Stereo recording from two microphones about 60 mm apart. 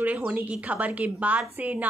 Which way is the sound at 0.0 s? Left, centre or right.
Right.